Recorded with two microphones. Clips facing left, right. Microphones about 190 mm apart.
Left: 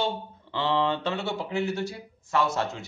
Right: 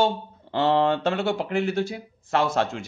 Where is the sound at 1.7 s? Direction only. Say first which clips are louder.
Right 5 dB; 90° right.